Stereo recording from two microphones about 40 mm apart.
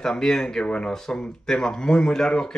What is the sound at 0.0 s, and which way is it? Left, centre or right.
Speech, centre.